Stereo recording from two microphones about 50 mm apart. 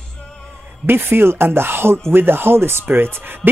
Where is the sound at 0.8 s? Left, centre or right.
Right.